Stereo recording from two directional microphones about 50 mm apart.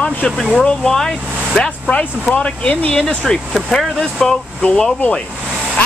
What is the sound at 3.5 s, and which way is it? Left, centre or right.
Speech, centre.